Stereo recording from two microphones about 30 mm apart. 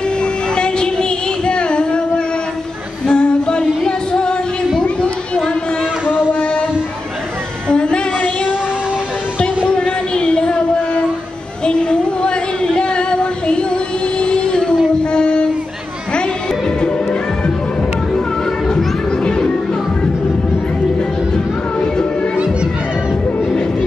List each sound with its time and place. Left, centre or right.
0.2 s child singing: left
3.1 s singing: left
3.8 s music: left
4.8 s chatter: left
7.6 s female singing: left
9.7 s a sound: left
14.2 s music: left
15.1 s a sound: left
19.2 s music: left